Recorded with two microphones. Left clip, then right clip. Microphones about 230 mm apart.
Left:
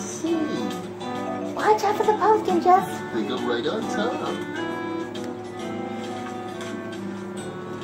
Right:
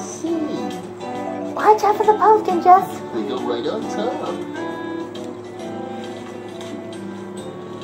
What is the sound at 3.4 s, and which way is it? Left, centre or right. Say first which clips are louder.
Speech: right 2 dB; centre.